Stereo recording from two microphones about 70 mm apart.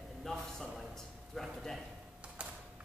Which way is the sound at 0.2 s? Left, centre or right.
Centre.